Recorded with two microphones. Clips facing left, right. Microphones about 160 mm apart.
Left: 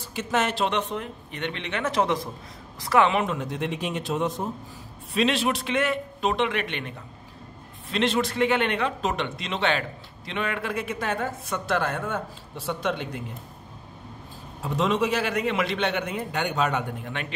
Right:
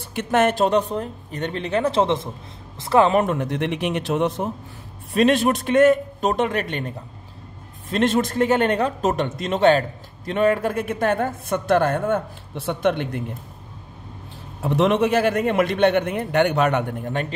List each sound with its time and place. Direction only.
0.0 s speech: 60° right (ahead or behind); by 3.1 s 30° right (ahead or behind)
3.1 s speech: 50° right (ahead or behind); by 4.5 s 70° right (ahead or behind)
5.1 s a man's voice: 50° right (ahead or behind)
14.6 s a man's voice: 65° right (ahead or behind)
17.0 s a man's voice: 40° right (ahead or behind)